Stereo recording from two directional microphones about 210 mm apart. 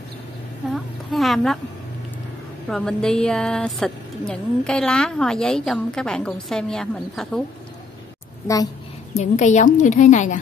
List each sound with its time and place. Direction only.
0.7 s a woman's voice: centre (ahead or behind)
2.7 s a woman's voice: 5° left (ahead or behind)
9.1 s a woman's voice: 35° left (ahead or behind)